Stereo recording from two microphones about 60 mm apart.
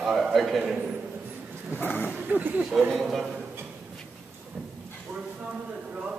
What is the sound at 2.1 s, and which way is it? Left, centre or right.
Speech, right.